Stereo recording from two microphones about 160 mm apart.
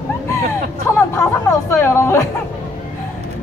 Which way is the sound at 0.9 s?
15° left (ahead or behind).